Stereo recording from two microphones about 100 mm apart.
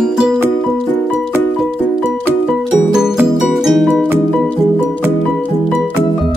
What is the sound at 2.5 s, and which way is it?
Music, 5° right (ahead or behind).